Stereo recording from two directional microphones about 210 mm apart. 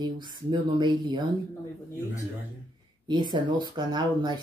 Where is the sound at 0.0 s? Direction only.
20° right (ahead or behind).